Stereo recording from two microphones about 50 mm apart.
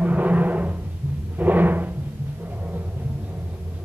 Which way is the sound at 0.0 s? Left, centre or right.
Right.